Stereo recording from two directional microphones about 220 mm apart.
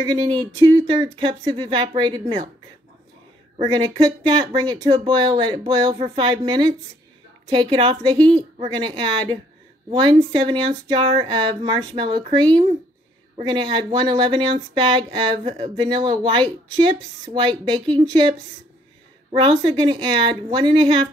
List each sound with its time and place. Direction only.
0.0 s speech: 20° right (ahead or behind)
3.5 s speech: 20° right (ahead or behind)
19.3 s speech: 25° right (ahead or behind)